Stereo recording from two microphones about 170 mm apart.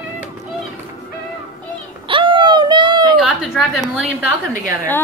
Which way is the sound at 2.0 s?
30° right (ahead or behind).